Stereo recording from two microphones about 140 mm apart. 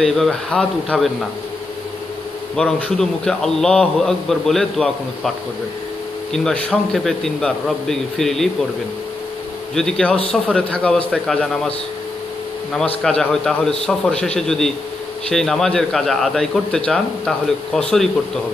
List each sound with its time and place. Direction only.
0.0 s a man's voice: 5° left (ahead or behind)
2.5 s a man's voice: 5° left (ahead or behind)
6.3 s a man's voice: 5° left (ahead or behind)
9.8 s a man's voice: 5° left (ahead or behind)
12.7 s a man's voice: 5° left (ahead or behind)